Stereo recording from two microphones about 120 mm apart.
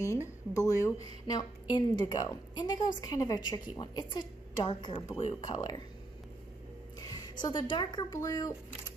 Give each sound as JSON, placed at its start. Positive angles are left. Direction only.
{"t": 0.0, "sound": "speech", "side_deg": 25}
{"t": 7.0, "sound": "speech", "side_deg": 30}